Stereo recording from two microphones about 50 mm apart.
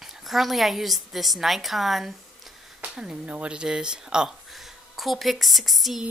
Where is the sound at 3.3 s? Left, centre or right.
Right.